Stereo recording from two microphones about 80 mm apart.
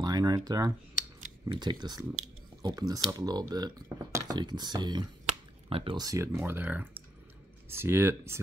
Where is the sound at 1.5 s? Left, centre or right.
Right.